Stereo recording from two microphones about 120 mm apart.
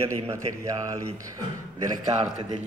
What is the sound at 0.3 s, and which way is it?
Speech, 25° right (ahead or behind).